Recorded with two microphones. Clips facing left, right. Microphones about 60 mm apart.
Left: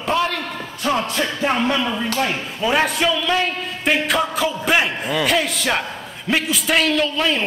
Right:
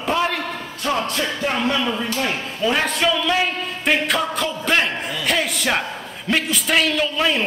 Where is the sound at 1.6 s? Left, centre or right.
Centre.